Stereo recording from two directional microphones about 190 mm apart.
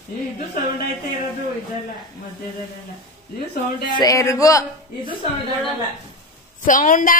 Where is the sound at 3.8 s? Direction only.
20° left (ahead or behind).